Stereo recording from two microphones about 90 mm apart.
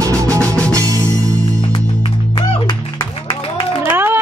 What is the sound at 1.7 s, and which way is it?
Music, 65° left (ahead or behind).